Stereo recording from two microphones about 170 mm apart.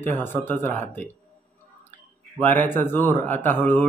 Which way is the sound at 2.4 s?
10° left (ahead or behind).